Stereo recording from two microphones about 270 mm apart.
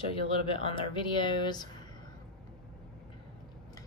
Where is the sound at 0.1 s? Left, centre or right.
Centre.